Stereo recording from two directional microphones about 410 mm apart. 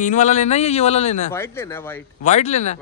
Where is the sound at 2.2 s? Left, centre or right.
Centre.